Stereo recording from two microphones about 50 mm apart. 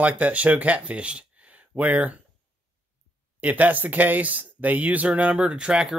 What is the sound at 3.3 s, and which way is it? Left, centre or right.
Speech, right.